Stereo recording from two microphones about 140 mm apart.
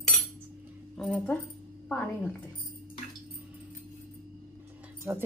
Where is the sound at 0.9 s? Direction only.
5° left (ahead or behind).